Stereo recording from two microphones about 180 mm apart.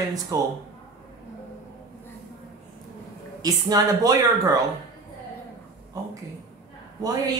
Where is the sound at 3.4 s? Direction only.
20° right (ahead or behind).